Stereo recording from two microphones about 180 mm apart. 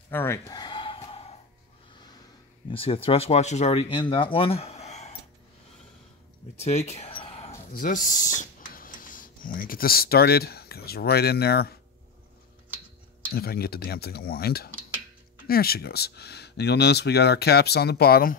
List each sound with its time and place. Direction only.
0.1 s a sound: 15° left (ahead or behind); by 1.2 s 30° left (ahead or behind)
2.7 s speech: 30° left (ahead or behind)
6.6 s speech: 40° left (ahead or behind)
7.7 s speech: 45° left (ahead or behind)
13.3 s speech: 60° left (ahead or behind)